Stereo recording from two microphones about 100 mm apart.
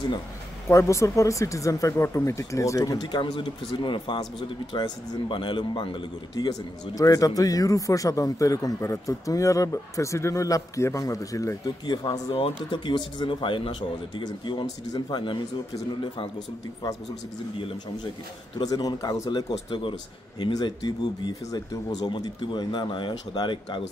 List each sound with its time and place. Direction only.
0.7 s speech: 30° left (ahead or behind)
3.0 s speech: 50° left (ahead or behind)
7.0 s speech: 35° left (ahead or behind)
11.8 s speech: 45° left (ahead or behind)
12.3 s speech: 80° left
12.7 s speech: 50° left (ahead or behind)
18.6 s speech: 40° left (ahead or behind)
19.7 s speech: 55° left (ahead or behind)
20.5 s speech: 45° left (ahead or behind)